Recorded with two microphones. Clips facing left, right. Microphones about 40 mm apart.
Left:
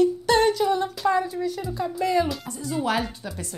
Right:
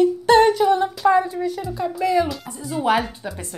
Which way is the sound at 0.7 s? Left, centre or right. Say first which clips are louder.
Right 6 dB; centre.